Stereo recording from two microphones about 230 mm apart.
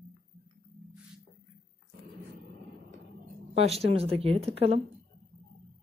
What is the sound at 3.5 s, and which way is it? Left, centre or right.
Speech, right.